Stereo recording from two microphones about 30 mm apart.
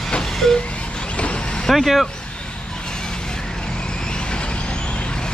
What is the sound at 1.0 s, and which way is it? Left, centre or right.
Vehicle, left.